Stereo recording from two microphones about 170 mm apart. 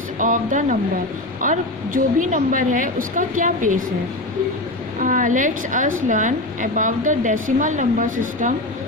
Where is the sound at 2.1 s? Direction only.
50° right (ahead or behind).